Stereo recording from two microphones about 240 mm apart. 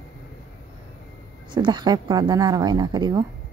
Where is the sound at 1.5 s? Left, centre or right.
Centre.